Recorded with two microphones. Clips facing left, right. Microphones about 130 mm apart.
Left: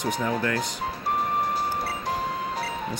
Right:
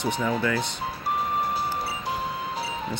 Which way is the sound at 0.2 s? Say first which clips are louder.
Right 2 dB; centre (ahead or behind).